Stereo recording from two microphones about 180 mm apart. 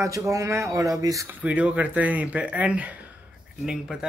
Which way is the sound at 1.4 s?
5° right (ahead or behind).